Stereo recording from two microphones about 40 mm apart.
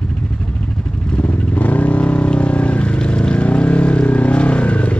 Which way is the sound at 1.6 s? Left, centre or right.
Left.